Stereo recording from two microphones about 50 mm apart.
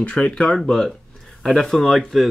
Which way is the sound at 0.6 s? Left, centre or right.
Centre.